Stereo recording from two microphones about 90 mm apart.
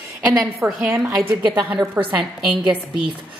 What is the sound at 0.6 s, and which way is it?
A woman's voice, 20° right (ahead or behind).